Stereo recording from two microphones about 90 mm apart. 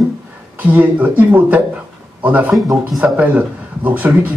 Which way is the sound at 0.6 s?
15° right (ahead or behind).